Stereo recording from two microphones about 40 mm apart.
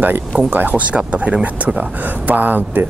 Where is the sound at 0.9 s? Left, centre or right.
Right.